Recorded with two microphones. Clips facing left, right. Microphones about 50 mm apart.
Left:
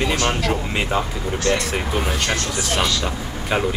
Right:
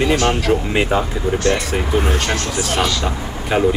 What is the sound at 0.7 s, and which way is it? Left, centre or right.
Speech, centre.